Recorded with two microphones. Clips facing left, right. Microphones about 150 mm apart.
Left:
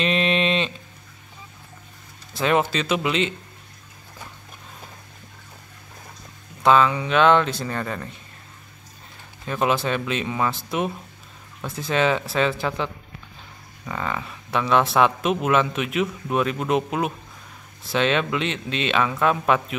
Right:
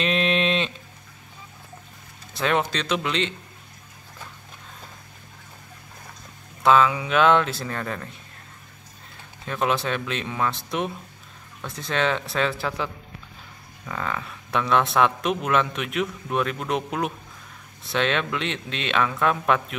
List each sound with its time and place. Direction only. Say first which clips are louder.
0.0 s a sound: left 1 dB; centre (ahead or behind)
2.3 s speech: left 3 dB; 5° left (ahead or behind)
6.6 s speech: left 1 dB; centre (ahead or behind)
9.5 s speech: left 2 dB; centre (ahead or behind)